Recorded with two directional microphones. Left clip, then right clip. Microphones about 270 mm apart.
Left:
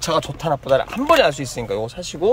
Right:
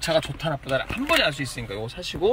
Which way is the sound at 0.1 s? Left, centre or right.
Centre.